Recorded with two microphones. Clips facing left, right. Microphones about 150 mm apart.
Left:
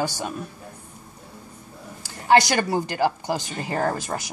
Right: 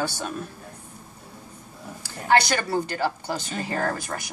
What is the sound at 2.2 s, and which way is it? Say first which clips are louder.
Speech: left 3 dB; 15° left (ahead or behind).